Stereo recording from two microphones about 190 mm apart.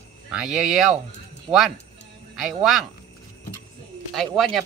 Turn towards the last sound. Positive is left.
turn(degrees=0)  # may be behind; listen again after turning